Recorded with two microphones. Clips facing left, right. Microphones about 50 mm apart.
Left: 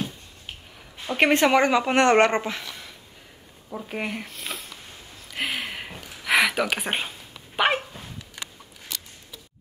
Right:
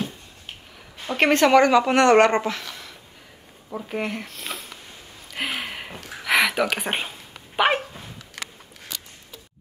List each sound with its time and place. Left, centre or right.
1.1 s a woman's voice: centre
3.9 s speech: centre
5.3 s a sound: centre
6.2 s dog: centre